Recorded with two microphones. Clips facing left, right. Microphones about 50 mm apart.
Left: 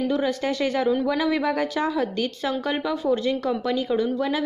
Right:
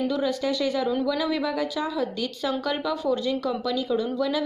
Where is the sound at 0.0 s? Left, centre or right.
Left.